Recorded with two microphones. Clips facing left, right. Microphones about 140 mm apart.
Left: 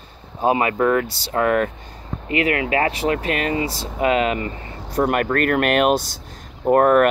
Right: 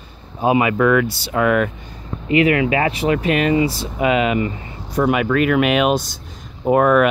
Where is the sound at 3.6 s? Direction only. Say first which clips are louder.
Right 3 dB; 35° left (ahead or behind).